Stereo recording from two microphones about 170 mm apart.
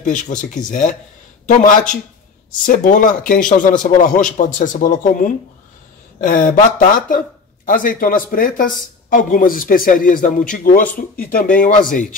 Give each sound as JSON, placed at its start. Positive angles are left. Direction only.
{"t": 0.0, "sound": "a man's voice", "side_deg": 50}